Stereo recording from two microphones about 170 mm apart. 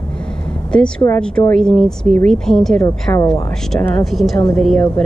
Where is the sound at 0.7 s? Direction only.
5° left (ahead or behind).